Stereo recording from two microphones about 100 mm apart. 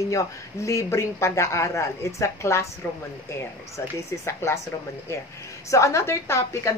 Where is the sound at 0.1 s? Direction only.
30° left (ahead or behind).